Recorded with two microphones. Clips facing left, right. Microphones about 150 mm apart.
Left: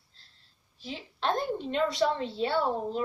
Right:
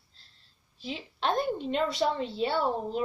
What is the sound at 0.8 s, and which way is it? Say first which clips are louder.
Speech: right 2 dB; 20° right (ahead or behind).